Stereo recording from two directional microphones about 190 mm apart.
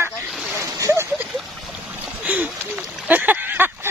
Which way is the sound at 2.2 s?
5° right (ahead or behind).